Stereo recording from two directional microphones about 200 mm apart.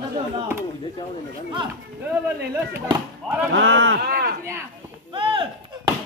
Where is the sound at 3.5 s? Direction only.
65° right (ahead or behind); by 4.3 s 50° right (ahead or behind).